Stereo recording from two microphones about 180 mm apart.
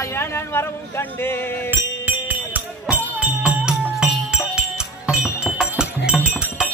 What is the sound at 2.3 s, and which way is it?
Music, 10° right (ahead or behind).